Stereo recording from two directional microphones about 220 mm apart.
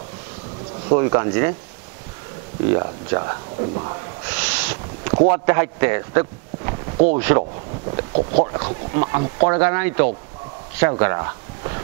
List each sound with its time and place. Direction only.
0.8 s speech: 25° right (ahead or behind)
2.7 s speech: 25° right (ahead or behind)
4.3 s a sound: 10° right (ahead or behind)
5.1 s a man's voice: 30° right (ahead or behind)
7.9 s speech: 35° right (ahead or behind)
8.5 s speech: 25° right (ahead or behind)